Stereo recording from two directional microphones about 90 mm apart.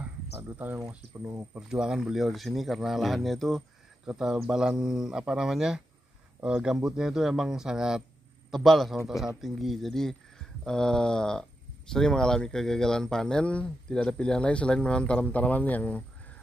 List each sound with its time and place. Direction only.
0.4 s speech: 25° right (ahead or behind)
0.7 s speech: 35° right (ahead or behind)
1.5 s speech: 10° right (ahead or behind)
4.0 s speech: 10° right (ahead or behind); by 16.0 s 15° left (ahead or behind)